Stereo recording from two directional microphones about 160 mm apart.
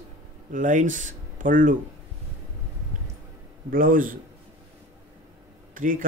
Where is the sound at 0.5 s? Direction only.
50° right (ahead or behind).